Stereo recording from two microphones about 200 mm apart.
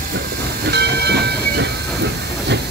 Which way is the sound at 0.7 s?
55° right (ahead or behind).